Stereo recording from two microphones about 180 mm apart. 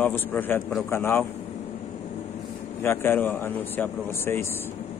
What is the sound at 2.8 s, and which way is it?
Speech, 10° left (ahead or behind).